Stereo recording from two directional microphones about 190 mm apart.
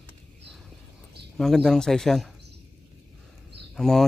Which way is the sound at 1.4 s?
Centre (ahead or behind).